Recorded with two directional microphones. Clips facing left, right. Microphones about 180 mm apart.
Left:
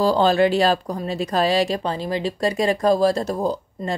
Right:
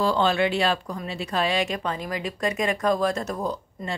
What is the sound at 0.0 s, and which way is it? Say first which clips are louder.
Speech: left 5 dB; 35° left (ahead or behind).